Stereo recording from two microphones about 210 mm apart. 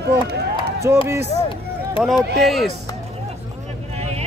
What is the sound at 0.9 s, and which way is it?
Speech, 10° right (ahead or behind).